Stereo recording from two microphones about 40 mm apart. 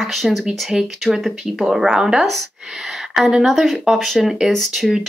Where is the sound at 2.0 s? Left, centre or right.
Centre.